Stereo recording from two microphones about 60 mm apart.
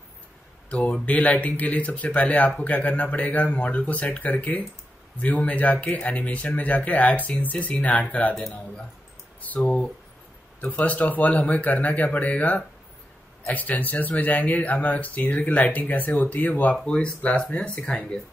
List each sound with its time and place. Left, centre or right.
0.7 s speech: left
9.6 s speech: centre